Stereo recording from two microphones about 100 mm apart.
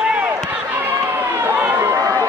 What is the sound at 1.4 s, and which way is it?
Chatter, 20° right (ahead or behind).